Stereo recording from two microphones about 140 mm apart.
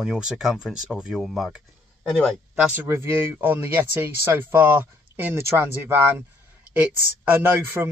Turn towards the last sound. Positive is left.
turn(degrees=-15)  # may be behind; listen again after turning